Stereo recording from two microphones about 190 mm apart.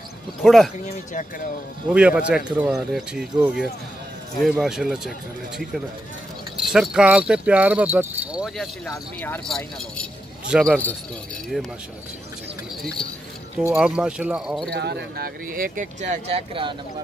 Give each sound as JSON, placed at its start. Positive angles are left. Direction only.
{"t": 0.4, "sound": "speech", "side_deg": 0}
{"t": 0.8, "sound": "speech", "side_deg": 40}
{"t": 1.9, "sound": "speech", "side_deg": -5}
{"t": 6.5, "sound": "speech", "side_deg": -5}
{"t": 8.9, "sound": "speech", "side_deg": 10}
{"t": 10.5, "sound": "speech", "side_deg": -5}
{"t": 13.6, "sound": "speech", "side_deg": -5}
{"t": 14.7, "sound": "speech", "side_deg": -60}